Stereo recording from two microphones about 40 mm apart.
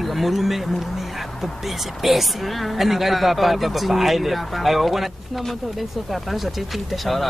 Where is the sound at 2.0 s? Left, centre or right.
Centre.